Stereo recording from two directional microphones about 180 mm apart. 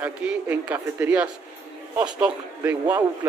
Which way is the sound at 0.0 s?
10° right (ahead or behind).